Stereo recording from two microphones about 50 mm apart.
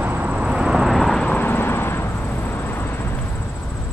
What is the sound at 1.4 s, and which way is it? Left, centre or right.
Vehicle, left.